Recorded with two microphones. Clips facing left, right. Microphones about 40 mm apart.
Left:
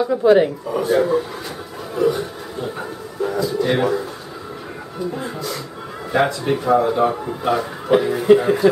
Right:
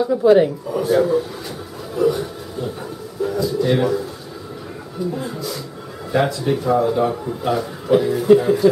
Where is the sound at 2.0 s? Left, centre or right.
Centre.